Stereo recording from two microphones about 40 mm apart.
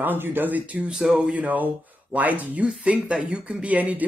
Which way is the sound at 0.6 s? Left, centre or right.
Right.